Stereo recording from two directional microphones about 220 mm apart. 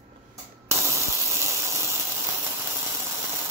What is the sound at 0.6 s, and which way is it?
Spray, 10° right (ahead or behind).